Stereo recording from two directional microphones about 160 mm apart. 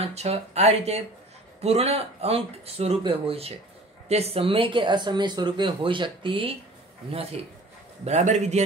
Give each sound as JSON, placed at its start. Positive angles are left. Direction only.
{"t": 0.0, "sound": "speech", "side_deg": -40}
{"t": 8.0, "sound": "a man's voice", "side_deg": -45}